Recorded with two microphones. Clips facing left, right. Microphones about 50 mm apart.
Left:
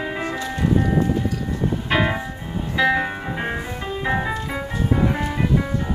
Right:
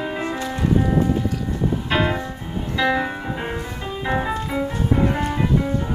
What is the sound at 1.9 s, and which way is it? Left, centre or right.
Music, centre.